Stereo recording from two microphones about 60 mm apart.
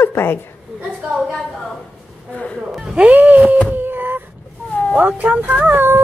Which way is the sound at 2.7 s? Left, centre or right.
Centre.